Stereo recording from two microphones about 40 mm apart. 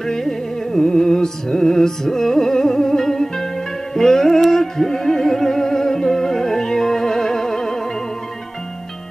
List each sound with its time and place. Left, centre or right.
0.0 s music: centre